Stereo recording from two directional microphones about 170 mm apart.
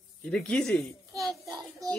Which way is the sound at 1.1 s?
20° right (ahead or behind).